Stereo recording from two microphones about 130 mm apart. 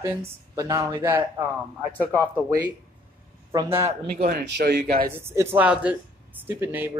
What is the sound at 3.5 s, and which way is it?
Speech, 20° right (ahead or behind).